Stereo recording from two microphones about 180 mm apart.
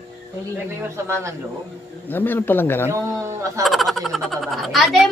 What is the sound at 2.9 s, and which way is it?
Speech, 15° right (ahead or behind).